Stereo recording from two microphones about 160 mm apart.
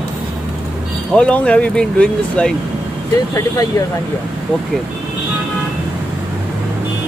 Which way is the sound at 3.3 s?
20° left (ahead or behind).